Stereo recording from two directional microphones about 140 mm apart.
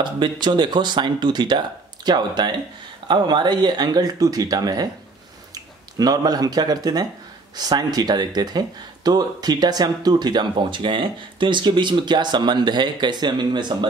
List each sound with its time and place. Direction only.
0.0 s speech: 35° right (ahead or behind)